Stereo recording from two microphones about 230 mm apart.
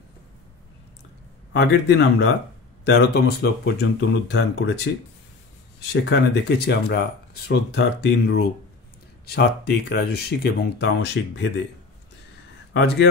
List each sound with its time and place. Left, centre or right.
1.5 s speech: left
5.8 s speech: left
9.8 s speech: left
12.7 s speech: left